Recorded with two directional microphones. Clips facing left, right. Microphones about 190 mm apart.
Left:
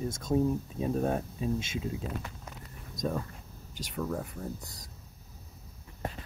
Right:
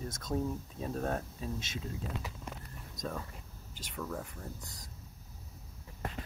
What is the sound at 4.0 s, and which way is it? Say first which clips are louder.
Speech: left 6 dB; 5° left (ahead or behind).